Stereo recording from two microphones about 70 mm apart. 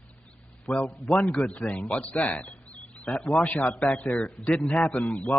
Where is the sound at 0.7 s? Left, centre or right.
Centre.